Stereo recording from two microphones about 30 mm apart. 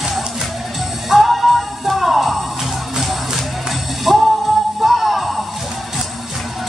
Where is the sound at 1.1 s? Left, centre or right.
Centre.